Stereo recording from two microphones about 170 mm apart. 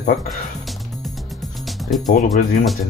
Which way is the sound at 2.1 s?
60° left (ahead or behind).